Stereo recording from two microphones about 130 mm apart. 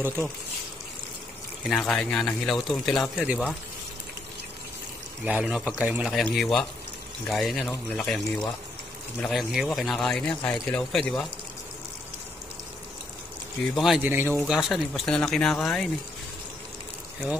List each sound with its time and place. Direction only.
1.6 s speech: 5° left (ahead or behind)
3.2 s speech: 10° right (ahead or behind)
5.2 s speech: 5° right (ahead or behind)
6.3 s speech: centre (ahead or behind)
13.7 s speech: centre (ahead or behind)
14.0 s speech: 15° right (ahead or behind)
14.3 s speech: 5° right (ahead or behind)